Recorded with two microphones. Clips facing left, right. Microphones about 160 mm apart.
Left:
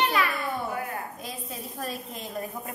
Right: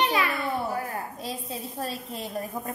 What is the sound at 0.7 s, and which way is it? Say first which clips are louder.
A woman's voice: right 1 dB; 30° right (ahead or behind).